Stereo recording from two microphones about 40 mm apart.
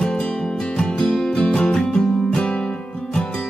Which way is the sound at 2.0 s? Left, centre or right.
Left.